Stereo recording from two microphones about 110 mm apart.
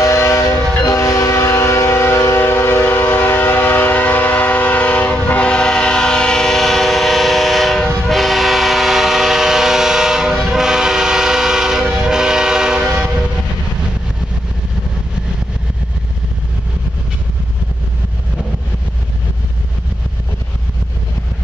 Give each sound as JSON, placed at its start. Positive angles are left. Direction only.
{"t": 0.0, "sound": "train", "side_deg": 25}